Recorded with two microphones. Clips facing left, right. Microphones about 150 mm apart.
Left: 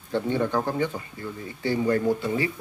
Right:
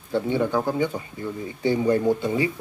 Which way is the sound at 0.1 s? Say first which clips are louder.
Right 2 dB; 10° right (ahead or behind).